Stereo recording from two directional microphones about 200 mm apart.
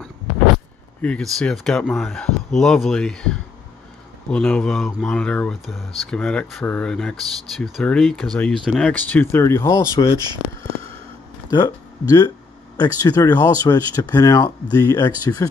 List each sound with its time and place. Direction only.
1.0 s speech: 5° left (ahead or behind)
11.5 s speech: 20° left (ahead or behind)